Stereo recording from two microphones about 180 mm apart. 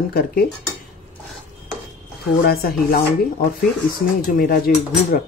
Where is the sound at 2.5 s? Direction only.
60° left (ahead or behind).